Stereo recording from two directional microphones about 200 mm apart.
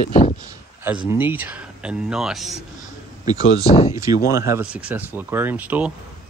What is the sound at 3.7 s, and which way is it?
Speech, 30° left (ahead or behind).